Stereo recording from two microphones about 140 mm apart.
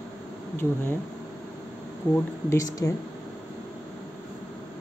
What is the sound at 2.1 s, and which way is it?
Speech, 20° left (ahead or behind).